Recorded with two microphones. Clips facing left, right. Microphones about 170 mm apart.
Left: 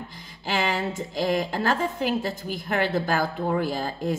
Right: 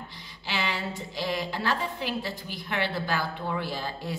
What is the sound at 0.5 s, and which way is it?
A woman's voice, 45° left (ahead or behind).